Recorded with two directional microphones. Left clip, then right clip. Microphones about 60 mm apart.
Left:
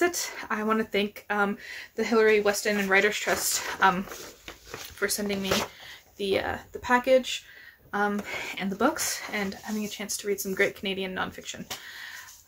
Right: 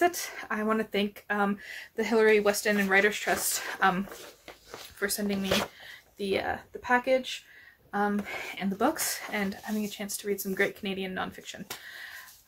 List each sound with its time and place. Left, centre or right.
0.0 s speech: centre
1.6 s speech: right
2.0 s speech: right
2.9 s speech: right
5.0 s speech: centre
5.9 s speech: centre
7.9 s speech: centre
8.9 s speech: right
9.7 s speech: centre